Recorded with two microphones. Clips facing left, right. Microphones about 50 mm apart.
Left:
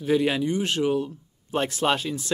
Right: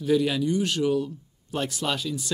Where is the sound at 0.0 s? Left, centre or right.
Left.